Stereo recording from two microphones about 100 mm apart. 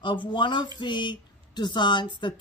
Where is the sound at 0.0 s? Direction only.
50° left (ahead or behind).